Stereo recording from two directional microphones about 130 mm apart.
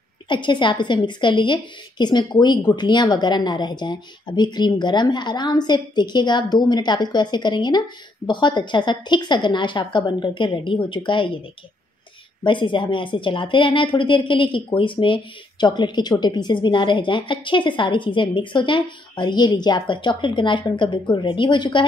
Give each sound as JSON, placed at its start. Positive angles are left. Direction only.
{"t": 0.3, "sound": "speech", "side_deg": 35}
{"t": 12.4, "sound": "speech", "side_deg": 40}